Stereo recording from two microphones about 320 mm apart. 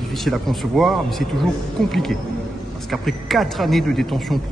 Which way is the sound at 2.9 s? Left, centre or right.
Centre.